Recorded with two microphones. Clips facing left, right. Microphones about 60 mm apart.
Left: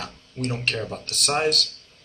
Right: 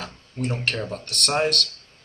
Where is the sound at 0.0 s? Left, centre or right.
Centre.